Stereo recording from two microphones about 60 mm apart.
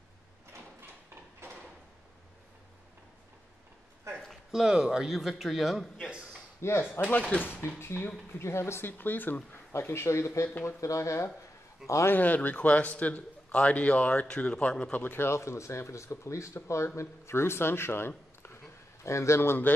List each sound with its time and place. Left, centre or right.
4.5 s a man's voice: centre
6.6 s speech: left
7.2 s a man's voice: centre
7.8 s speech: left
8.3 s speech: left
9.7 s speech: left
12.1 s a man's voice: left
15.1 s speech: left